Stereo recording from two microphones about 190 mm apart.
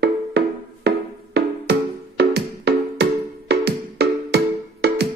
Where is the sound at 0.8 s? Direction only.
60° right (ahead or behind).